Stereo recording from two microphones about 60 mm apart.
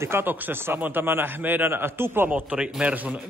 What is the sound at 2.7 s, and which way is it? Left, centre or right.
Speech, centre.